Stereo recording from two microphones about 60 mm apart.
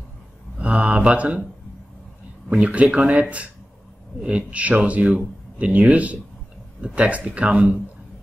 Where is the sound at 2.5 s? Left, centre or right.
Right.